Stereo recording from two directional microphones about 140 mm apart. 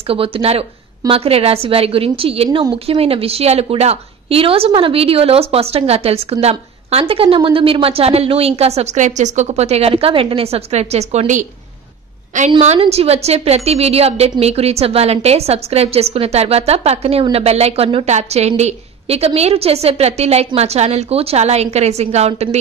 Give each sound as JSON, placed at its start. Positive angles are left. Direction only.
{"t": 0.0, "sound": "a woman's voice", "side_deg": -40}
{"t": 12.5, "sound": "a woman's voice", "side_deg": -45}